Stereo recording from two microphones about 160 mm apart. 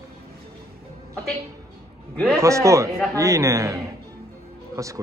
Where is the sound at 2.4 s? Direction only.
20° right (ahead or behind).